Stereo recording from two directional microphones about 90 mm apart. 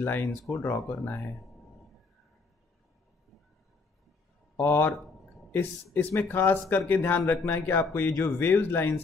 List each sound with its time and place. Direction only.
0.0 s speech: 20° left (ahead or behind)
4.6 s speech: 25° left (ahead or behind)